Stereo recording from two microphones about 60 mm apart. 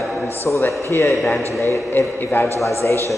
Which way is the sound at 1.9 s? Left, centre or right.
Left.